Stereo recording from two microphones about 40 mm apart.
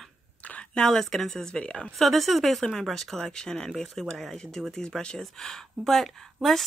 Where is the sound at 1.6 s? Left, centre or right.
Left.